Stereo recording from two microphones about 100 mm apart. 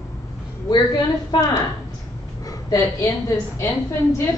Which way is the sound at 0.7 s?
45° left (ahead or behind).